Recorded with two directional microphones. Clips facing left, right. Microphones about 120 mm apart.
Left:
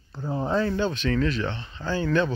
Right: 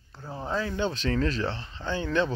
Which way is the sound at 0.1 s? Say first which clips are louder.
Left 9 dB; 25° left (ahead or behind).